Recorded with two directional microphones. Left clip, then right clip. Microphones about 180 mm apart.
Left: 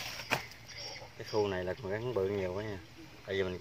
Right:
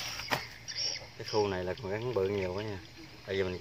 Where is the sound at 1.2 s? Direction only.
10° right (ahead or behind).